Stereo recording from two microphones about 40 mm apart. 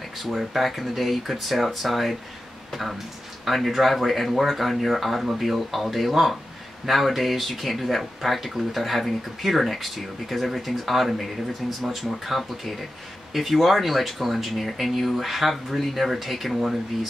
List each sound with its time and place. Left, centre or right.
0.2 s speech: centre